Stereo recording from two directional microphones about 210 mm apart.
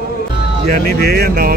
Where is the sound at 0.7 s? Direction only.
50° right (ahead or behind).